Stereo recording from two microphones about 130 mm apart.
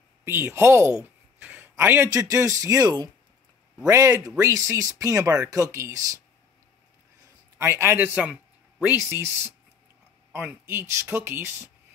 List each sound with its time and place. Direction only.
0.2 s speech: 20° right (ahead or behind)
1.4 s a sound: 15° right (ahead or behind)
2.1 s speech: 25° right (ahead or behind)
7.5 s a man's voice: 20° right (ahead or behind)